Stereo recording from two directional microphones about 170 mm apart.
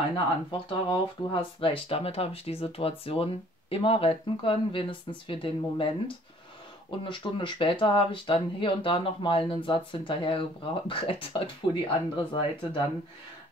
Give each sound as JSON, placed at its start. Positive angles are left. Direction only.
{"t": 0.1, "sound": "speech", "side_deg": 25}